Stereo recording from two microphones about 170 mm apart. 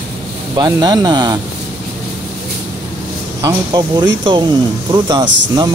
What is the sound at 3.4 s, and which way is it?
Speech, 20° right (ahead or behind).